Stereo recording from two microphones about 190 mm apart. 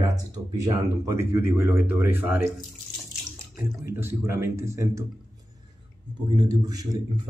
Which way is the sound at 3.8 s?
15° right (ahead or behind).